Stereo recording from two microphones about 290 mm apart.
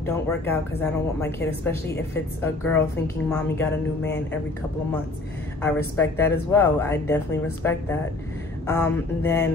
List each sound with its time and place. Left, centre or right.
0.0 s a woman's voice: centre
5.6 s a woman's voice: centre